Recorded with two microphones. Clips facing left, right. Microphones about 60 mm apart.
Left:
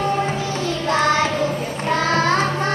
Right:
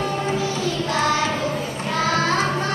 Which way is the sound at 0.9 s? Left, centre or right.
Left.